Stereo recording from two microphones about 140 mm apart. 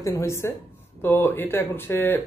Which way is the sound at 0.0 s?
20° left (ahead or behind).